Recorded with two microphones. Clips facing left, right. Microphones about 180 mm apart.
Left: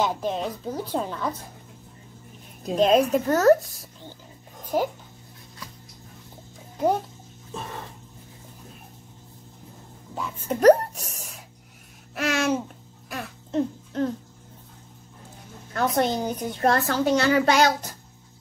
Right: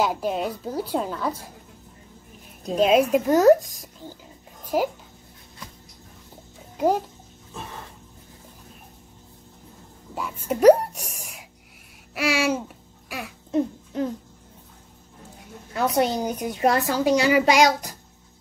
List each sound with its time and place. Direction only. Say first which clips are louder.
0.0 s speech: right 2 dB; 10° right (ahead or behind)
2.6 s speech: right 1 dB; 5° right (ahead or behind)
10.1 s speech: right 1 dB; 10° right (ahead or behind)
13.1 s a sound: right 2 dB; 10° right (ahead or behind)
15.7 s speech: right 1 dB; 10° right (ahead or behind)